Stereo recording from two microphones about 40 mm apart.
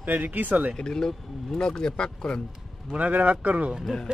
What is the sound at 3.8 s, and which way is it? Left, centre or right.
Speech, centre.